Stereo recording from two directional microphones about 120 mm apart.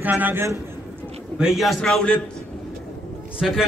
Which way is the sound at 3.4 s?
5° right (ahead or behind).